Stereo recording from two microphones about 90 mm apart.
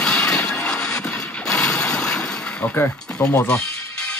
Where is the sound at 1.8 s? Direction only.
10° left (ahead or behind).